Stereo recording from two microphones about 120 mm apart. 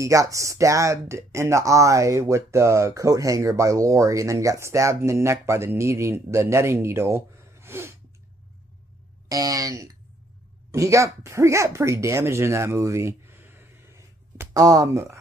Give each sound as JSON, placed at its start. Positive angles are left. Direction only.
{"t": 0.0, "sound": "speech", "side_deg": -25}
{"t": 9.3, "sound": "speech", "side_deg": -30}